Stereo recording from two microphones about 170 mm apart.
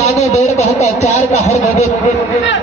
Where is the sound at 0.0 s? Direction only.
40° left (ahead or behind).